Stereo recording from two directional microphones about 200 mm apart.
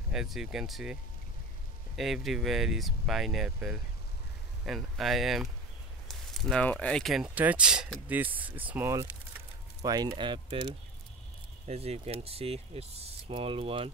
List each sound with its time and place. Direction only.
0.1 s speech: centre (ahead or behind)
2.0 s speech: centre (ahead or behind)
9.8 s speech: 20° right (ahead or behind)